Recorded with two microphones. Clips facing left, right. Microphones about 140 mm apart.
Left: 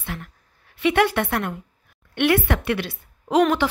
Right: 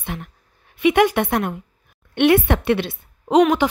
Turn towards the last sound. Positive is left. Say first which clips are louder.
# right 3 dB
turn(degrees=-15)  # may be behind; listen again after turning